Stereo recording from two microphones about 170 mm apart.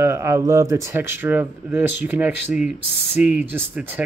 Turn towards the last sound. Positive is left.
turn(degrees=-10)  # may be behind; listen again after turning